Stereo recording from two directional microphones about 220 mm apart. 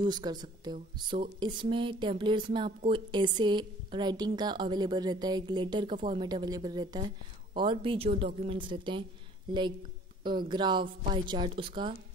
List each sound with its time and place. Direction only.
0.0 s speech: 20° right (ahead or behind)